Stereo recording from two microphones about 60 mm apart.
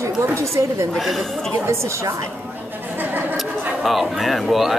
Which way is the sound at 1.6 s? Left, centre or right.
Right.